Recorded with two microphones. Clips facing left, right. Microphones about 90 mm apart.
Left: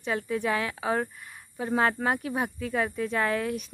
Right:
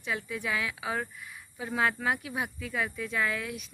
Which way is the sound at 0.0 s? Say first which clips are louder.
Left 6 dB; 40° left (ahead or behind).